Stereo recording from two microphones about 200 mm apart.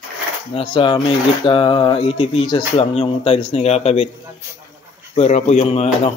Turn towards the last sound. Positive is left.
turn(degrees=30)  # may be behind; listen again after turning